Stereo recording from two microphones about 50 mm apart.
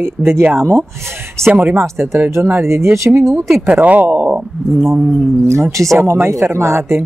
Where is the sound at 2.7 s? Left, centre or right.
Right.